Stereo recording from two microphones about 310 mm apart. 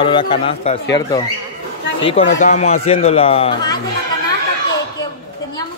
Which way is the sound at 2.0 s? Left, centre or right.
Centre.